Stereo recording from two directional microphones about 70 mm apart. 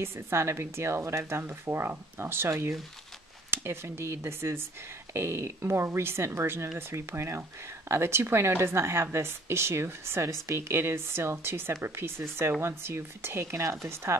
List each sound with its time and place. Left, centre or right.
0.0 s speech: right